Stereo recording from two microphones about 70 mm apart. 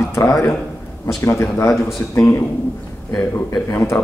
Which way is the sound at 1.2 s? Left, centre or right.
Left.